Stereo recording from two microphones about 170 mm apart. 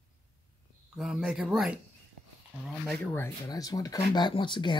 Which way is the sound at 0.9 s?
5° right (ahead or behind).